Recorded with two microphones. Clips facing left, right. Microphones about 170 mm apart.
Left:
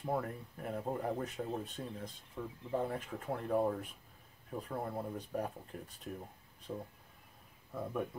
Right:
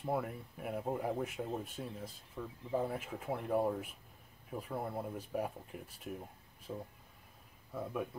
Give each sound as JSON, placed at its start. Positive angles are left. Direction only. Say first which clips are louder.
{"t": 0.0, "sound": "speech", "louder": "even", "side_deg": -5}